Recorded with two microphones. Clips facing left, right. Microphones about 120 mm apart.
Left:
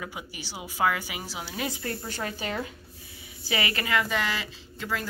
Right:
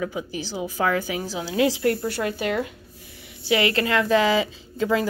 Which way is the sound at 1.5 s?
90° right.